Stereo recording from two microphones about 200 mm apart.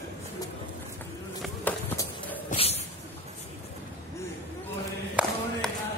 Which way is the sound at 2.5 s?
30° left (ahead or behind).